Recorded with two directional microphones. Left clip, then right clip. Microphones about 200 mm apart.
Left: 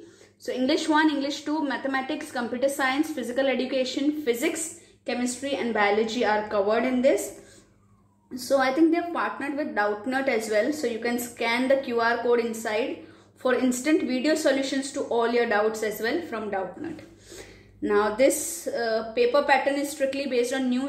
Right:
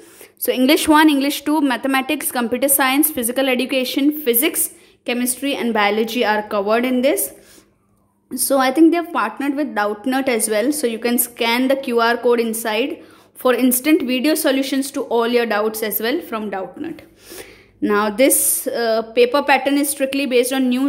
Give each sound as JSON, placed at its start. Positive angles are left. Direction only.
{"t": 0.5, "sound": "a woman's voice", "side_deg": -55}
{"t": 8.5, "sound": "a woman's voice", "side_deg": -65}